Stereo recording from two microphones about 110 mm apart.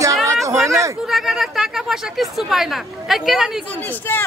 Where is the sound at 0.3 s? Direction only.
25° right (ahead or behind).